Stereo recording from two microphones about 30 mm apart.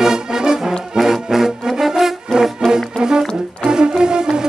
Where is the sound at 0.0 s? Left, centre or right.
Right.